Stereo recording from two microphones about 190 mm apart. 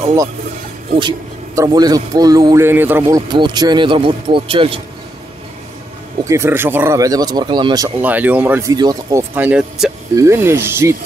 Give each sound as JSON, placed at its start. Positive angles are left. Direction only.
{"t": 0.9, "sound": "speech", "side_deg": -20}
{"t": 6.2, "sound": "speech", "side_deg": -15}
{"t": 8.0, "sound": "speech", "side_deg": -10}
{"t": 9.3, "sound": "speech", "side_deg": -10}
{"t": 10.1, "sound": "speech", "side_deg": -15}